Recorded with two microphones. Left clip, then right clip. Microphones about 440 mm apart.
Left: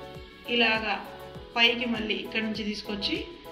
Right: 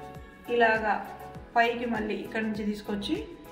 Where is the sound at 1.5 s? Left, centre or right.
Centre.